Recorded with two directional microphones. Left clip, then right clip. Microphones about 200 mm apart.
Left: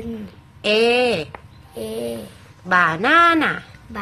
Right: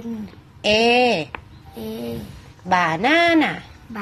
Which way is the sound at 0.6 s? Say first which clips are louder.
Even; centre (ahead or behind).